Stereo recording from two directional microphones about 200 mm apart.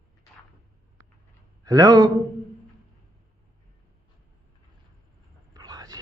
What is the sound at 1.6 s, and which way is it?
Speech, 20° right (ahead or behind).